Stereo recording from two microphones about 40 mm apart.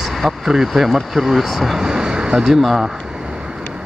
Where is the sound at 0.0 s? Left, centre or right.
Centre.